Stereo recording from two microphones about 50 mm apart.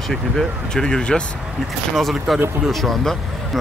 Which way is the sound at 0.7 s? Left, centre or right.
Centre.